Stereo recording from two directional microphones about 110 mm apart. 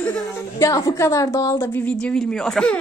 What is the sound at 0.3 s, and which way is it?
A woman's voice, 25° left (ahead or behind).